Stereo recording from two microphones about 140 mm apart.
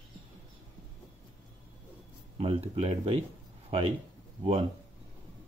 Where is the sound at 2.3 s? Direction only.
40° right (ahead or behind).